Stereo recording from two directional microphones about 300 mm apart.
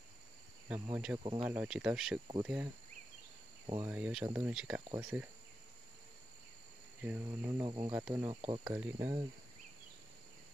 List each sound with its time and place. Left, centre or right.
0.7 s speech: centre
7.0 s speech: centre